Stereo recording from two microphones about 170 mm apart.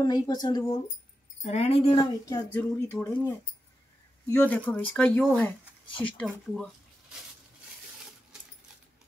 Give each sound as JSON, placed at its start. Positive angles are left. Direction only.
{"t": 0.0, "sound": "speech", "side_deg": 25}
{"t": 1.4, "sound": "speech", "side_deg": 40}
{"t": 2.0, "sound": "speech", "side_deg": 20}
{"t": 6.5, "sound": "a sound", "side_deg": 0}